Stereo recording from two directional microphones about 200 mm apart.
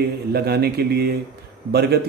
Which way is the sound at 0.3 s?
50° right (ahead or behind).